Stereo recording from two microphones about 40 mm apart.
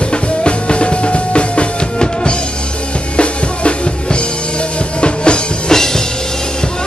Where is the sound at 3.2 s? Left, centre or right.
Left.